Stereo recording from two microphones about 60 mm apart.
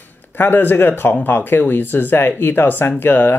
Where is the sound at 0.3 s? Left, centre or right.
Left.